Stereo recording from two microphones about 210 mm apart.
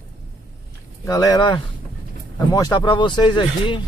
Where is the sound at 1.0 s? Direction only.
15° left (ahead or behind).